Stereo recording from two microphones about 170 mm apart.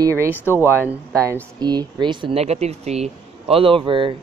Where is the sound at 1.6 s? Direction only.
25° right (ahead or behind).